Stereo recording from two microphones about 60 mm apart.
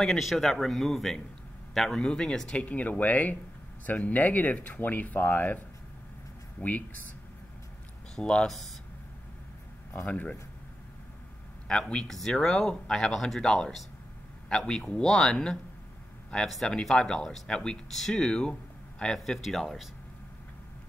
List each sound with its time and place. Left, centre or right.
0.0 s a man's voice: centre; by 5.6 s left
6.6 s speech: left
8.2 s speech: centre
8.5 s speech: centre
10.0 s speech: left
11.9 s speech: centre
16.6 s speech: centre